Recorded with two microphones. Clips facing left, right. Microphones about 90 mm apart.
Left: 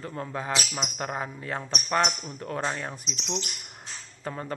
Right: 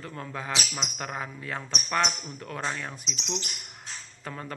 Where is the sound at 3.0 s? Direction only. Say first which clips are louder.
Left 1 dB; 40° left (ahead or behind).